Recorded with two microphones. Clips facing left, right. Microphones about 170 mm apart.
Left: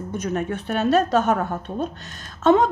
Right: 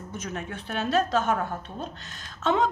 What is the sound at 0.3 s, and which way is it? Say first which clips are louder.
Speech: left 10 dB; 40° left (ahead or behind).